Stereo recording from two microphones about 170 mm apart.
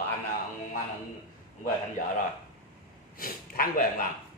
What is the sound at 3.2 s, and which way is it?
Speech, 60° left (ahead or behind).